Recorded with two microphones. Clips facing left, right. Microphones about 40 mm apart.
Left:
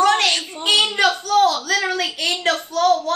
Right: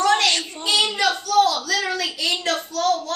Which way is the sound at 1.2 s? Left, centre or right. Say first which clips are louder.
Left 2 dB; left.